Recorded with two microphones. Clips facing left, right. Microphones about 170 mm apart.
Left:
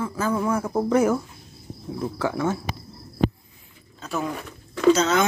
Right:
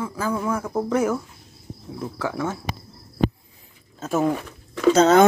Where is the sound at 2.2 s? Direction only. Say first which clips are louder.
Left 2 dB; centre (ahead or behind).